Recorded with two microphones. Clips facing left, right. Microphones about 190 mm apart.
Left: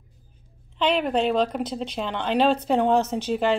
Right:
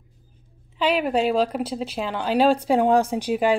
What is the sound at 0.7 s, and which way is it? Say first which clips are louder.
Speech: right 1 dB; 5° right (ahead or behind).